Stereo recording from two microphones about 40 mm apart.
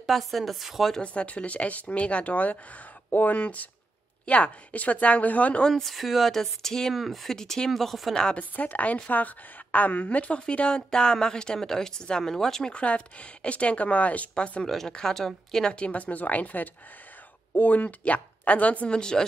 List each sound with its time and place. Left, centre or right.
0.0 s speech: centre
1.0 s speech: left
3.1 s speech: left
5.7 s speech: centre
7.3 s a woman's voice: centre
7.7 s speech: centre
8.1 s speech: left
8.4 s speech: left
10.4 s a woman's voice: left
12.7 s speech: left
14.9 s a woman's voice: centre
15.6 s speech: left
16.0 s speech: left
18.9 s speech: left